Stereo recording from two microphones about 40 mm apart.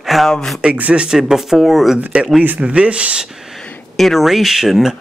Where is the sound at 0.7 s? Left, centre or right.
Right.